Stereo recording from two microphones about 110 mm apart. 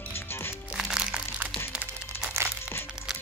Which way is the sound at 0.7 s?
5° right (ahead or behind).